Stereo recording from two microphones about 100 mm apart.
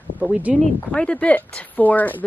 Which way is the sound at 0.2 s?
10° right (ahead or behind).